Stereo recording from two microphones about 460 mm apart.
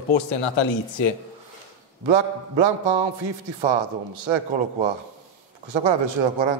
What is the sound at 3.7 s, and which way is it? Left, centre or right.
Speech, right.